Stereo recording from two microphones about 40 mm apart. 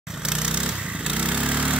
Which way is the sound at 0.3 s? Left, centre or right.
Right.